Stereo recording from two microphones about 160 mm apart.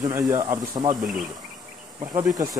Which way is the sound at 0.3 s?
20° right (ahead or behind).